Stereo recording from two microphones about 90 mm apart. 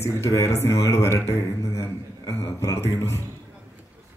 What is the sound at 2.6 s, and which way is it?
Speech, 30° left (ahead or behind).